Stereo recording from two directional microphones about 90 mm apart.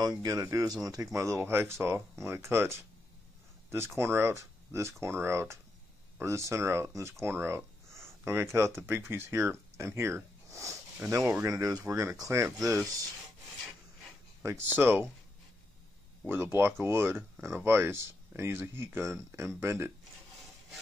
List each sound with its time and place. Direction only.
0.0 s speech: 40° right (ahead or behind)
11.4 s speech: 40° right (ahead or behind)
14.4 s speech: 30° right (ahead or behind)
16.8 s speech: 30° right (ahead or behind)